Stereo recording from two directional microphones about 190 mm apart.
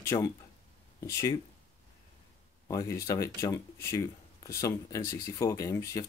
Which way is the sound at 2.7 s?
15° left (ahead or behind).